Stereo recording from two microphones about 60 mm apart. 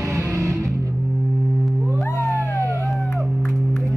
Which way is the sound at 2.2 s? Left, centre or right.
Right.